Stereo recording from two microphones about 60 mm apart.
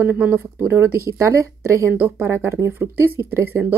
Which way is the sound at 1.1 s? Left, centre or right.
Right.